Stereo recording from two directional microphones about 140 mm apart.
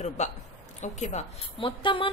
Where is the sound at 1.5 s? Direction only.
35° left (ahead or behind).